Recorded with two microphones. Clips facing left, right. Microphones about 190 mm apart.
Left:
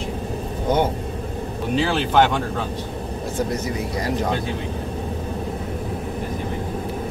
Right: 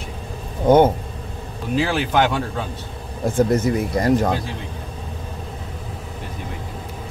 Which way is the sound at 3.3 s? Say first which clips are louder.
Right 7 dB; 50° right (ahead or behind).